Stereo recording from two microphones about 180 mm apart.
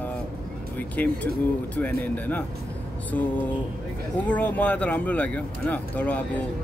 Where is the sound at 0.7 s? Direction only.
10° left (ahead or behind).